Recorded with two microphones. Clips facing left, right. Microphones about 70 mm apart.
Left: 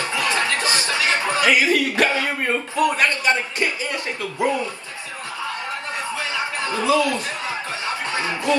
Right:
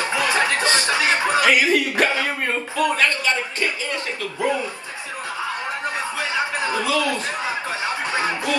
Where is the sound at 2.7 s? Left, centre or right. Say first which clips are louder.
Even; left.